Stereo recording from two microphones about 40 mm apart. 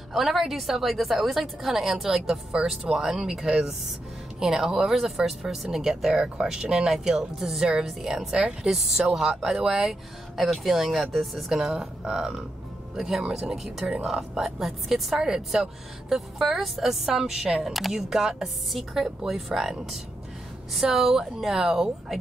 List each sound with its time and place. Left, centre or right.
0.1 s a woman's voice: centre
17.5 s speech: right
17.7 s a woman's voice: centre